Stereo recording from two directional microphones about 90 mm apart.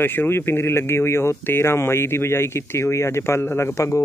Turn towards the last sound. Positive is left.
turn(degrees=30)  # may be behind; listen again after turning